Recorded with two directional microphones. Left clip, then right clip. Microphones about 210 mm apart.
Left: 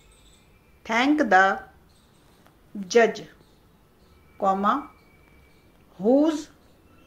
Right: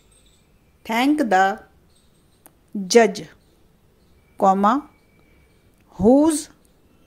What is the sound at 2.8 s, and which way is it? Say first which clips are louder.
Speech: right 4 dB; 50° right (ahead or behind).